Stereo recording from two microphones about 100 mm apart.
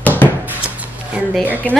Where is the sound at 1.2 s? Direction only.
10° right (ahead or behind).